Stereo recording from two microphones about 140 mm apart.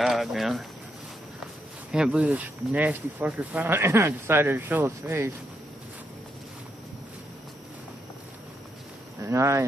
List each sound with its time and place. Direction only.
0.0 s speech: centre (ahead or behind); by 5.3 s 20° right (ahead or behind)
9.2 s speech: 20° right (ahead or behind)